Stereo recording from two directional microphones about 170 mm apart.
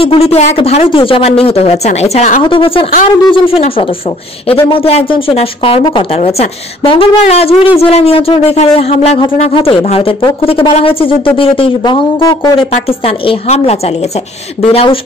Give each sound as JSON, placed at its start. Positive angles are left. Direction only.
{"t": 0.0, "sound": "a woman's voice", "side_deg": 35}
{"t": 2.4, "sound": "a woman's voice", "side_deg": 30}